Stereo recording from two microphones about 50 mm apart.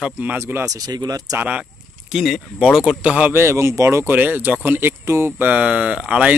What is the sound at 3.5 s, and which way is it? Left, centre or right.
Speech, right.